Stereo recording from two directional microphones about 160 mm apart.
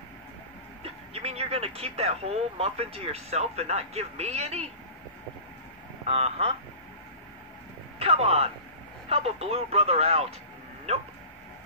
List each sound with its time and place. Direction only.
0.8 s speech: 40° right (ahead or behind)
6.0 s speech: 40° right (ahead or behind)
8.0 s speech: 40° right (ahead or behind)